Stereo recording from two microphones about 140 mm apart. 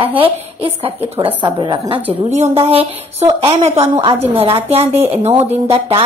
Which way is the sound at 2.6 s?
45° right (ahead or behind).